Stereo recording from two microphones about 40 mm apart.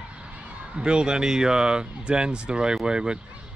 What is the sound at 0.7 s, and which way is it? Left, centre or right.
Speech, right.